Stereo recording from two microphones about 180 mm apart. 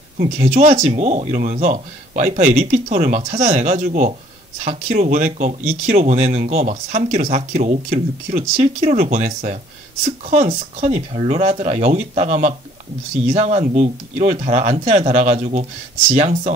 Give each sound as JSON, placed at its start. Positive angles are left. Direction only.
{"t": 0.2, "sound": "speech", "side_deg": -35}